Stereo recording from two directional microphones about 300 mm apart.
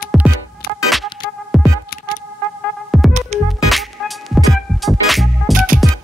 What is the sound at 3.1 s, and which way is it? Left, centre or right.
Music, right.